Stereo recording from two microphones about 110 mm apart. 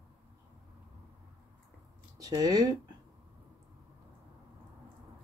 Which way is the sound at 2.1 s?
35° right (ahead or behind).